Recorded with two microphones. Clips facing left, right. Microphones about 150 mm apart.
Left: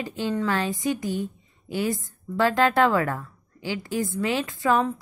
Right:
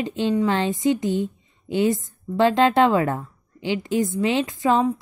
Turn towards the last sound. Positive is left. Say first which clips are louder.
# right 3 dB
turn(degrees=-20)  # may be behind; listen again after turning